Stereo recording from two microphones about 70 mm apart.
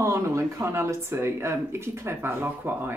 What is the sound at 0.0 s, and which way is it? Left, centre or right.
Speech, right.